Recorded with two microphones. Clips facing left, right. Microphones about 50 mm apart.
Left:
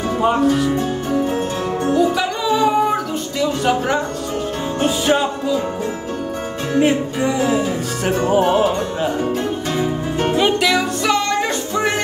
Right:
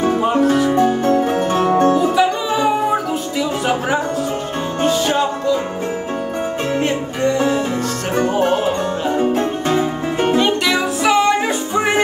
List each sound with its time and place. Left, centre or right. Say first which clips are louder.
1.5 s music: right 6 dB; right
2.0 s music: right 2 dB; centre
4.8 s music: even; centre
6.8 s music: left 6 dB; centre
9.3 s music: right 4 dB; right
10.3 s music: left 2 dB; centre
11.1 s music: right 4 dB; centre